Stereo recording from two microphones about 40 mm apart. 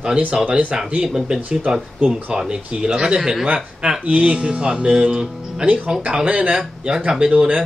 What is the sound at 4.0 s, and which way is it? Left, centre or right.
Speech, right.